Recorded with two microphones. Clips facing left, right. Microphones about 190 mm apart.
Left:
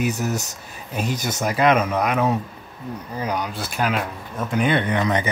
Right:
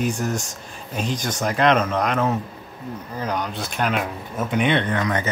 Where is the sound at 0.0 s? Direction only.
5° left (ahead or behind).